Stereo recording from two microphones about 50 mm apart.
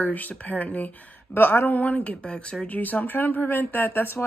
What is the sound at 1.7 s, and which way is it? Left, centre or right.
Speech, left.